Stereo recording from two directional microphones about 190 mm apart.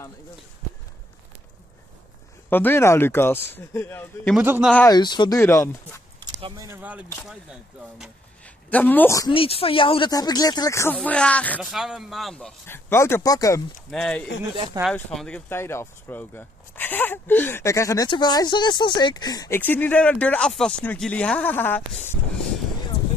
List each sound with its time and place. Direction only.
2.5 s speech: 10° left (ahead or behind)
4.4 s speech: 5° right (ahead or behind)
4.7 s speech: 20° left (ahead or behind)
6.2 s speech: 20° right (ahead or behind)
6.8 s speech: 10° right (ahead or behind)
8.6 s speech: 10° left (ahead or behind)
9.3 s speech: 30° left (ahead or behind); by 12.5 s centre (ahead or behind)
12.6 s speech: 15° left (ahead or behind)
13.8 s speech: 5° left (ahead or behind)
14.5 s speech: 25° right (ahead or behind)
14.8 s speech: centre (ahead or behind)